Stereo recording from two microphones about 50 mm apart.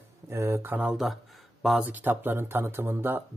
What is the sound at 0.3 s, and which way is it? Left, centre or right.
Speech, right.